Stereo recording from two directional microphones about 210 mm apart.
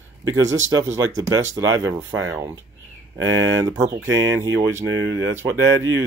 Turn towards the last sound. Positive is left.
turn(degrees=-15)  # may be behind; listen again after turning